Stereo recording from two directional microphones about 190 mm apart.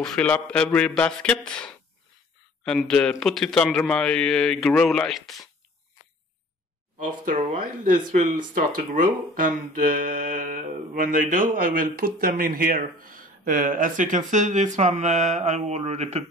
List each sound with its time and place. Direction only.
0.0 s a man's voice: 5° left (ahead or behind)
7.0 s speech: 45° right (ahead or behind)